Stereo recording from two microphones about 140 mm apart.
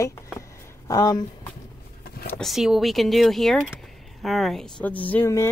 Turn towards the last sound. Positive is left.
turn(degrees=20)  # may be behind; listen again after turning